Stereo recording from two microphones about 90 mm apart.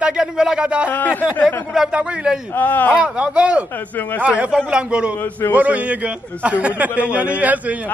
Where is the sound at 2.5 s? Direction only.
20° left (ahead or behind).